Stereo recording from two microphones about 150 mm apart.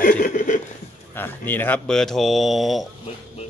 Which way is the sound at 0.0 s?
65° left (ahead or behind).